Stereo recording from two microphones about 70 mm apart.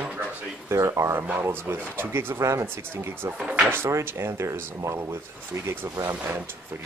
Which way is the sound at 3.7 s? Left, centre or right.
Right.